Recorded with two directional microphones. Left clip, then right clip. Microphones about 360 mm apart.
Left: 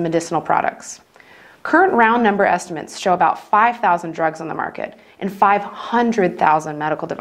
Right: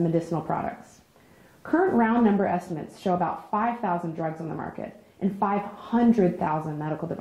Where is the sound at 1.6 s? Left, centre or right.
Centre.